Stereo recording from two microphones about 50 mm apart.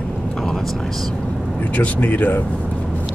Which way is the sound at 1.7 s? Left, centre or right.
Left.